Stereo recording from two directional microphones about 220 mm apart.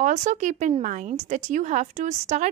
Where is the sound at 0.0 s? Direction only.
35° right (ahead or behind).